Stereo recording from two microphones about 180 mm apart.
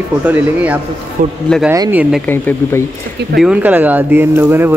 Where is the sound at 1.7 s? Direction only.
10° right (ahead or behind).